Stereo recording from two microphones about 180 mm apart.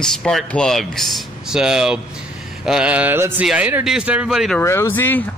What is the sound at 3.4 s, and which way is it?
Speech, 5° right (ahead or behind).